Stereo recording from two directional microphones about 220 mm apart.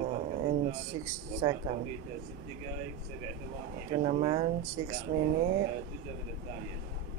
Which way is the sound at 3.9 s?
25° right (ahead or behind).